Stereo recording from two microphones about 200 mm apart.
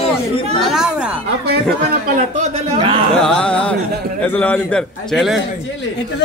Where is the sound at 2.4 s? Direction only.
30° right (ahead or behind).